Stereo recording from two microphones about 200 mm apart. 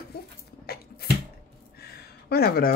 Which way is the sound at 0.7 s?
50° left (ahead or behind).